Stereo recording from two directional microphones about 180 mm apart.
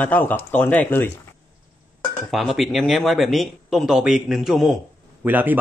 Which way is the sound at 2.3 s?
Centre (ahead or behind).